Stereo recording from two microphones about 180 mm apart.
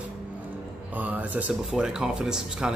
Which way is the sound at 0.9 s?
10° right (ahead or behind).